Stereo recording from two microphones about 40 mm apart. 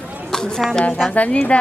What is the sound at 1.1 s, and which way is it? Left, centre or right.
Speech, left.